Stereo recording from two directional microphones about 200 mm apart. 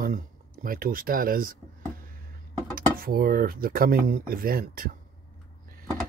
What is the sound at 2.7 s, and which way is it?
Speech, 45° right (ahead or behind).